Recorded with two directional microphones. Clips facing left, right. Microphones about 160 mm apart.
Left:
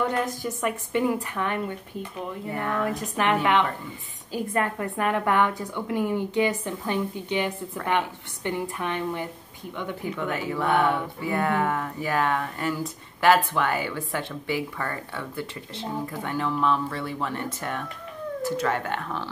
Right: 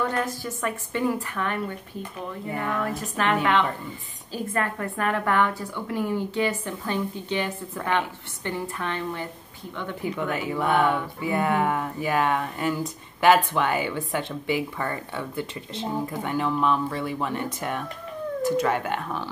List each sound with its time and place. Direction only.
0.1 s a woman's voice: 20° left (ahead or behind)
2.8 s a woman's voice: 20° left (ahead or behind)
10.1 s speech: 15° right (ahead or behind)